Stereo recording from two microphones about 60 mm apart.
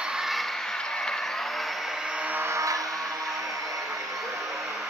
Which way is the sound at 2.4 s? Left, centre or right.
Right.